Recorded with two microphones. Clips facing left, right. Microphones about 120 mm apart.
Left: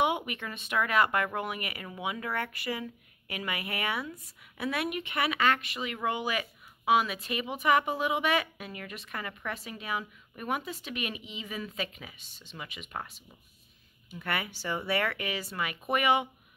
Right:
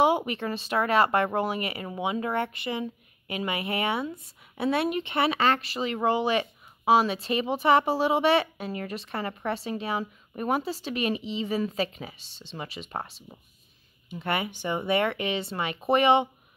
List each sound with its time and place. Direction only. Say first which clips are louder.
0.0 s speech: right 6 dB; 35° right (ahead or behind)